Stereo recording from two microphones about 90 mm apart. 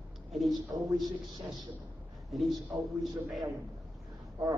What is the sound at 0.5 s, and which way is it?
Speech, centre (ahead or behind).